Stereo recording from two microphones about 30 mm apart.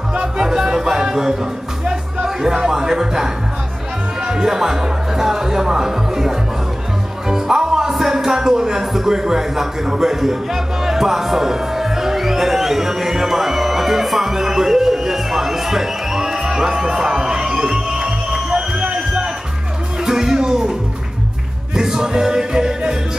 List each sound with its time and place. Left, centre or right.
0.1 s music: right
4.2 s speech: centre
7.2 s music: centre
8.9 s speech: centre
20.1 s speech: centre
21.7 s music: right